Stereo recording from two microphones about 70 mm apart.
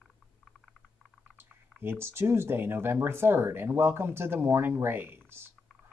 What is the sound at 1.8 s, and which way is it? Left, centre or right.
Speech, right.